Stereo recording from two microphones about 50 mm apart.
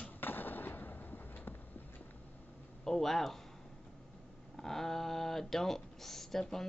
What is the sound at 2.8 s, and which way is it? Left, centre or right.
Speech, centre.